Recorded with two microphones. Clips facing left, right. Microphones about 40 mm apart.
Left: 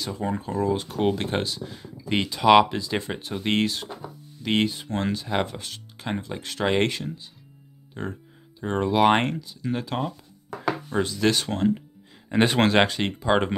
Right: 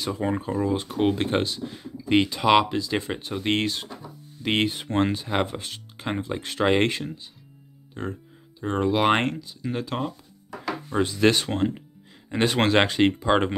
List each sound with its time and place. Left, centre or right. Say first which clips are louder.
0.0 s speech: right 2 dB; centre
0.5 s speech: even; centre; by 5.2 s right
5.2 s speech: right 1 dB; centre
7.9 s speech: right 1 dB; centre
11.1 s speech: right 4 dB; centre
12.3 s speech: left 1 dB; centre